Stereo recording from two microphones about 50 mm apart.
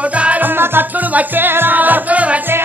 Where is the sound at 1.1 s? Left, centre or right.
Right.